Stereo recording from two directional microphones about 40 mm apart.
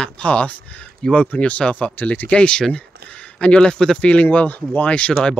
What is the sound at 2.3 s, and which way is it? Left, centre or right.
Speech, left.